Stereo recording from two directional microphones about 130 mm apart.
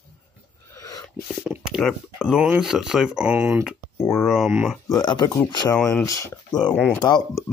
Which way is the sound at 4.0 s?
20° left (ahead or behind).